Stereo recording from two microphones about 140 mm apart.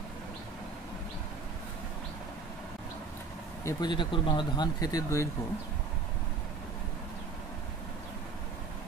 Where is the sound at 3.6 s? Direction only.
30° left (ahead or behind).